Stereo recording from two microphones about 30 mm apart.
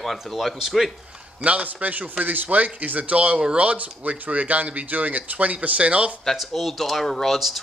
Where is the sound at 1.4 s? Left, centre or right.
Right.